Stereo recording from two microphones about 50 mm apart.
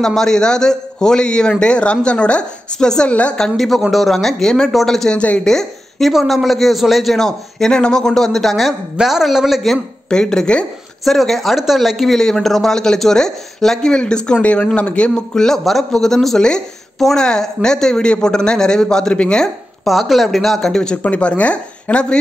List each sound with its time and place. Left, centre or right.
0.0 s a man's voice: centre
3.3 s a man's voice: centre
5.1 s speech: left
5.4 s a woman's voice: centre
10.0 s a woman's voice: centre
11.1 s a man's voice: centre; by 19.4 s left
19.4 s a man's voice: centre
21.0 s speech: left